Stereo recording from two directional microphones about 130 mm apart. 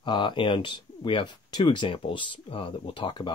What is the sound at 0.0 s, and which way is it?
Speech, 35° left (ahead or behind).